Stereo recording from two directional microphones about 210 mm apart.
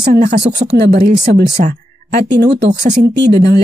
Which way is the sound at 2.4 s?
55° right (ahead or behind).